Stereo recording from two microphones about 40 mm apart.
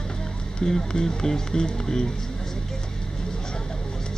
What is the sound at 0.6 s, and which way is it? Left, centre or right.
Speech, centre.